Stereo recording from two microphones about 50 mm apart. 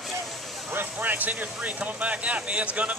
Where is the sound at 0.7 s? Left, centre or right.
Right.